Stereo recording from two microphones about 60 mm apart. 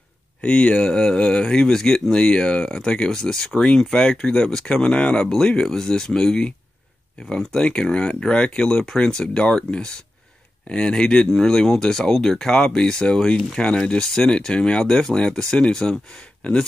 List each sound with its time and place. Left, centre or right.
0.4 s speech: left